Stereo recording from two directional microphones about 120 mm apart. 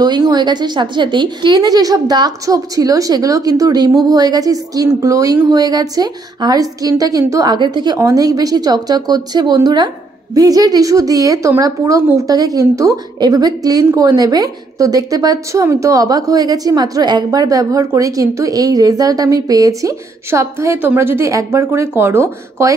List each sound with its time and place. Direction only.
0.0 s a woman's voice: 35° right (ahead or behind)